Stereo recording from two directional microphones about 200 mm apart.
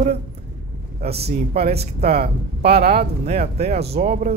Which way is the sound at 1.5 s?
30° right (ahead or behind).